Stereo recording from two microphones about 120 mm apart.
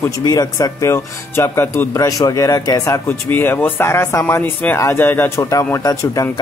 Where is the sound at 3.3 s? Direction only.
15° left (ahead or behind).